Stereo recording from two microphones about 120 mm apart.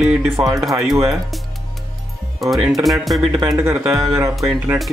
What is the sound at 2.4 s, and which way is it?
Speech, centre (ahead or behind).